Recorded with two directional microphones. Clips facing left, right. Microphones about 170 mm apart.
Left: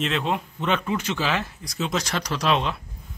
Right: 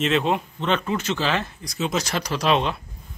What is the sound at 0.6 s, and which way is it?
Speech, 10° left (ahead or behind).